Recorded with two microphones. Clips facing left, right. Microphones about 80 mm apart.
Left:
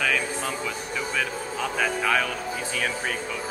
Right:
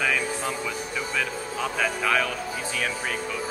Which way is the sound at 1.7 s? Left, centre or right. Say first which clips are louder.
Left 1 dB; centre.